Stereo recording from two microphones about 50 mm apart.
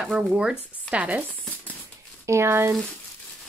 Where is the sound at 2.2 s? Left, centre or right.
Right.